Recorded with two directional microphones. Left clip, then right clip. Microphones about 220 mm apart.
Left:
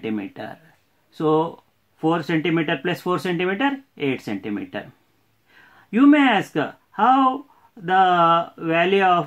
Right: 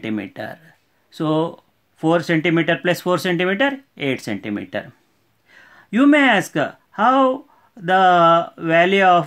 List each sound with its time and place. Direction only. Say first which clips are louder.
0.0 s speech: right 2 dB; 35° right (ahead or behind)